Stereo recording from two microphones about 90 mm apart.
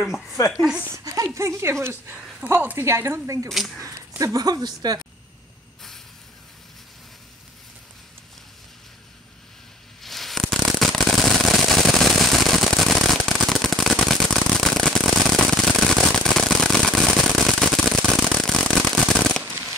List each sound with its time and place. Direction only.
0.0 s a woman's voice: centre (ahead or behind)
0.9 s speech: 40° right (ahead or behind)
3.4 s a woman's voice: centre (ahead or behind)
4.2 s a woman's voice: 40° right (ahead or behind)
10.0 s a sound: centre (ahead or behind)
17.2 s fireworks: centre (ahead or behind)